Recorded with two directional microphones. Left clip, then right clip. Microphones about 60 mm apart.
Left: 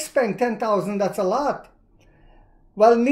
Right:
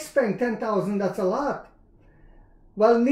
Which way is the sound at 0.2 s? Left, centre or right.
Left.